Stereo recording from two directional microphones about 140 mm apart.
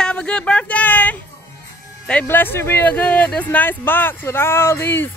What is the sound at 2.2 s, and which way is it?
Speech, 15° left (ahead or behind).